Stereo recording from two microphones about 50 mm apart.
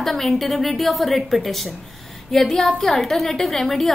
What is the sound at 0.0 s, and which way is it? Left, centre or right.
A woman's voice, centre.